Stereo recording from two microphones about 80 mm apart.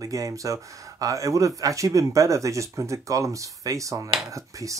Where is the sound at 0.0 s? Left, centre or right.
Right.